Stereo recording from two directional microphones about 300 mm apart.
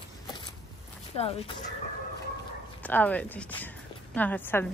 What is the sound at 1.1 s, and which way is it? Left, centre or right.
Speech, centre.